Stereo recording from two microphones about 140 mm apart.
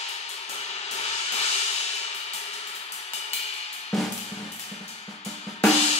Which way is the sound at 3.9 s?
Centre (ahead or behind).